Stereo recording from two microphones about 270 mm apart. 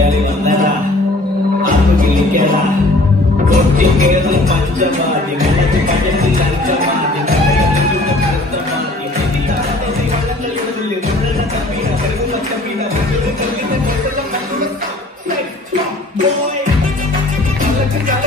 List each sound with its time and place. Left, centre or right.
3.4 s music: right